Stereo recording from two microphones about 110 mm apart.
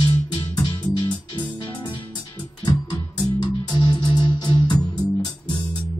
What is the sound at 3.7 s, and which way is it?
Music, 45° left (ahead or behind).